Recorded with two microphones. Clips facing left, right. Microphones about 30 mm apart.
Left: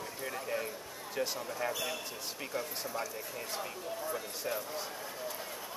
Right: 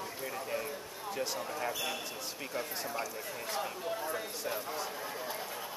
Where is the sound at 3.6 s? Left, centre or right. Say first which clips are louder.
Right 3 dB; right.